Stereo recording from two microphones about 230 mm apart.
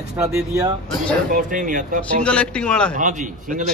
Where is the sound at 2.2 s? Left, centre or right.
Centre.